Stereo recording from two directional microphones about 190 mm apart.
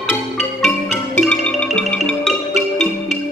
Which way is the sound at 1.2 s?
5° left (ahead or behind).